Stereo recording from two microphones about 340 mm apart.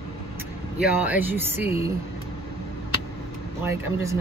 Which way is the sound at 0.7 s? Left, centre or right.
Centre.